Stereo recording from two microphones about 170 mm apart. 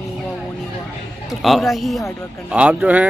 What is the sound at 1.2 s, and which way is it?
A man's voice, centre (ahead or behind).